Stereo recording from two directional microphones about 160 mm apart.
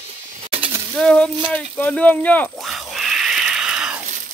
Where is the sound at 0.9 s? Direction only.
5° left (ahead or behind).